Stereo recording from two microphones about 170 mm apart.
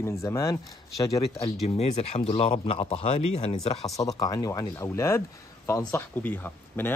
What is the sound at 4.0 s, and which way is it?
Speech, 20° left (ahead or behind).